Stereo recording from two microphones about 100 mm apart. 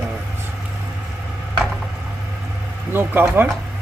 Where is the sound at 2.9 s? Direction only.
20° right (ahead or behind).